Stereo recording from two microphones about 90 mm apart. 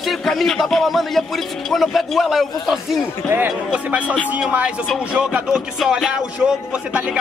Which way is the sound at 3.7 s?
15° right (ahead or behind).